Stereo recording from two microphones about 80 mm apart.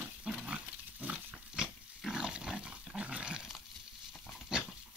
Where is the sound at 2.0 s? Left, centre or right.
Centre.